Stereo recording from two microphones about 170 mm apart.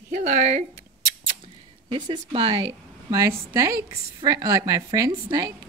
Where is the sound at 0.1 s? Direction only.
45° right (ahead or behind).